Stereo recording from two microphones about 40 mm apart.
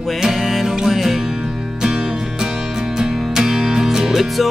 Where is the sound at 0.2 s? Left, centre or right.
Centre.